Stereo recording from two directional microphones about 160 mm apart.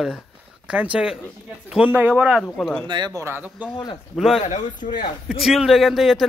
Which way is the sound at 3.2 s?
10° right (ahead or behind).